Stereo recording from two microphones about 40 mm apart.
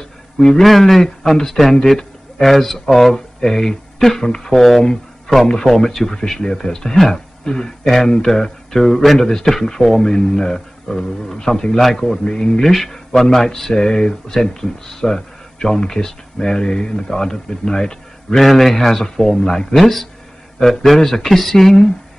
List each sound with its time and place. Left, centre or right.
0.6 s speech: centre
9.0 s a man's voice: centre
12.6 s speech: centre
13.7 s speech: centre
18.4 s speech: centre